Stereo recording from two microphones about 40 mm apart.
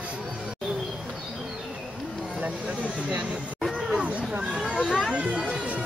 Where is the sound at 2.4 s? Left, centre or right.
Right.